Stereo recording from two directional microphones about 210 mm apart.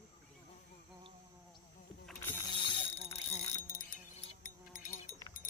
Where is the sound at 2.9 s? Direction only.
30° left (ahead or behind).